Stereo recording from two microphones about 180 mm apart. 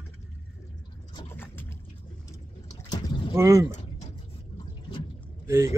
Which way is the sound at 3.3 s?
15° right (ahead or behind).